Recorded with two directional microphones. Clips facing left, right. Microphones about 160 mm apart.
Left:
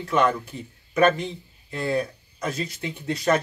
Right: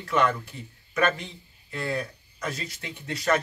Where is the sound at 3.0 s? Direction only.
20° left (ahead or behind).